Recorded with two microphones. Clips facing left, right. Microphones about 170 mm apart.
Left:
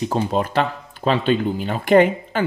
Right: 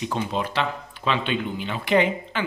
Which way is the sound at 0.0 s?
40° left (ahead or behind).